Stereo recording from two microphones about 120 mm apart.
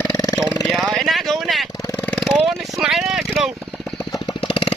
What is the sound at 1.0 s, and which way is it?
Vehicle, centre (ahead or behind).